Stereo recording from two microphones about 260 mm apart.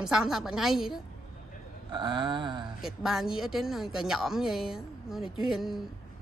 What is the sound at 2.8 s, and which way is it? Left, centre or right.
Speech, centre.